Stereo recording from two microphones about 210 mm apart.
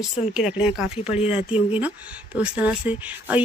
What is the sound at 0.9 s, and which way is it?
Speech, 30° left (ahead or behind).